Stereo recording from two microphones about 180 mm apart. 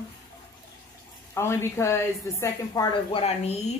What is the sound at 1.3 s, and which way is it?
A woman's voice, 15° left (ahead or behind).